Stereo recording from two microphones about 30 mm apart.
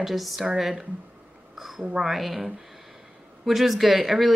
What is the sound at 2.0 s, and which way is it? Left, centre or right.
Speech, centre.